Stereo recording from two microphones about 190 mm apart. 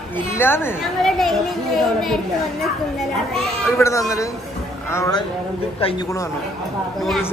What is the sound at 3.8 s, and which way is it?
A man's voice, 15° left (ahead or behind).